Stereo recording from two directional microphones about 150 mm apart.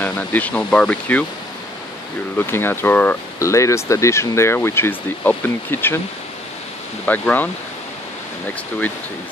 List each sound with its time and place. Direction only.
0.0 s speech: 10° left (ahead or behind)
2.3 s speech: 15° left (ahead or behind)
7.1 s speech: 10° left (ahead or behind)